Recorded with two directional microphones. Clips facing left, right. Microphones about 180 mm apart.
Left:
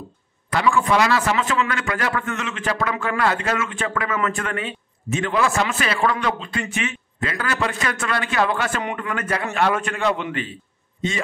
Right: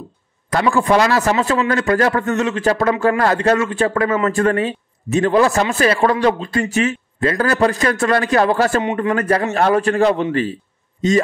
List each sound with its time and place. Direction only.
0.5 s a man's voice: 35° right (ahead or behind)